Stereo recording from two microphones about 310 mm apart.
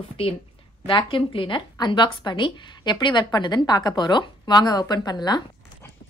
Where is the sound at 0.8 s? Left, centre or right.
Centre.